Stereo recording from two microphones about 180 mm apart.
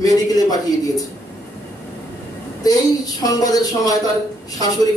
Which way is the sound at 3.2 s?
20° left (ahead or behind).